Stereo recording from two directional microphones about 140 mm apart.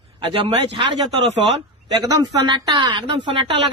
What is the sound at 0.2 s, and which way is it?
Speech, 35° right (ahead or behind).